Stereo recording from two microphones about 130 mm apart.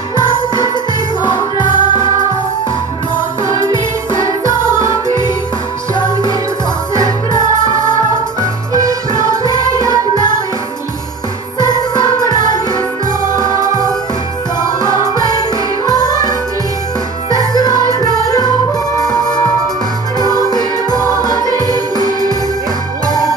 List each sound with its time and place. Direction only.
1.2 s music: 35° left (ahead or behind)
3.4 s music: 25° right (ahead or behind)
8.7 s music: 25° right (ahead or behind)
11.6 s music: 35° left (ahead or behind)
13.4 s music: 25° right (ahead or behind)
15.1 s music: 30° left (ahead or behind)
17.4 s music: 30° left (ahead or behind)
20.2 s music: 30° left (ahead or behind)
21.0 s music: 25° right (ahead or behind)